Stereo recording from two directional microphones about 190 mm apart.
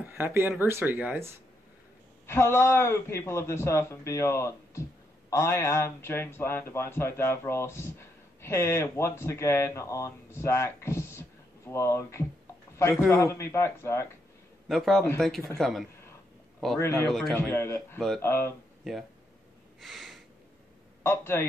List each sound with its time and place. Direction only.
0.0 s speech: 10° right (ahead or behind)
2.2 s a man's voice: 15° left (ahead or behind)
14.7 s speech: centre (ahead or behind)
17.5 s a man's voice: 15° left (ahead or behind)
19.8 s a sound: centre (ahead or behind)
21.0 s a man's voice: 15° left (ahead or behind)